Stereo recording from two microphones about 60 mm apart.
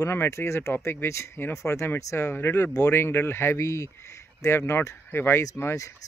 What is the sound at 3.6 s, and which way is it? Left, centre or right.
Speech, left.